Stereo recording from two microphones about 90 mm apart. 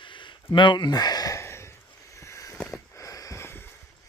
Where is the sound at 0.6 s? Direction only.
60° left (ahead or behind).